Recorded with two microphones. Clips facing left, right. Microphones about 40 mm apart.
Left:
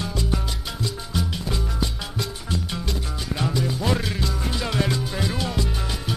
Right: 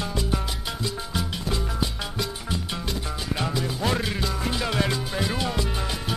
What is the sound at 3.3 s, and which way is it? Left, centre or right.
Music, centre.